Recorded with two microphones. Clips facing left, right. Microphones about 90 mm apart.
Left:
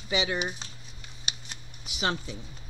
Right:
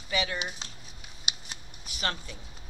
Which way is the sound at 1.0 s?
10° right (ahead or behind).